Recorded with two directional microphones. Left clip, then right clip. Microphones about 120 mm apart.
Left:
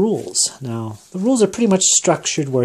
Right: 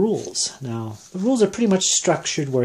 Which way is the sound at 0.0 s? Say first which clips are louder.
Left 3 dB; 40° left (ahead or behind).